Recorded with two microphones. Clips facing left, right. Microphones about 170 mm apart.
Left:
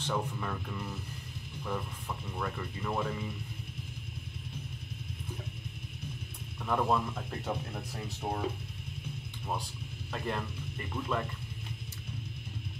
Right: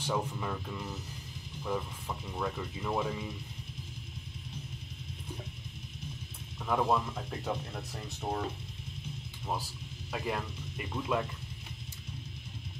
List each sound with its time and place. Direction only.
0.0 s speech: 10° right (ahead or behind)
6.6 s speech: 5° right (ahead or behind)
10.1 s speech: 5° right (ahead or behind)